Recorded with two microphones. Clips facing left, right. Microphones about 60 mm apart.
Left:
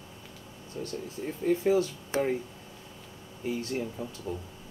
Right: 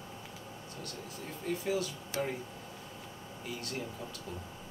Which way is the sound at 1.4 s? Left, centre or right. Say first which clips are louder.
Left 9 dB; left.